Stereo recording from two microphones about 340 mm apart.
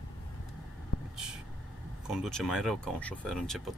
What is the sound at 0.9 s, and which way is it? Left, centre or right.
Vehicle, left.